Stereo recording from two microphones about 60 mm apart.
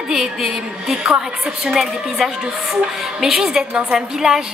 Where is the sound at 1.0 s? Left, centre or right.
Centre.